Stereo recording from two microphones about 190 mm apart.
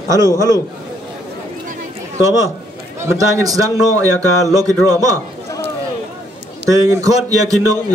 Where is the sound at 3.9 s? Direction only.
15° left (ahead or behind).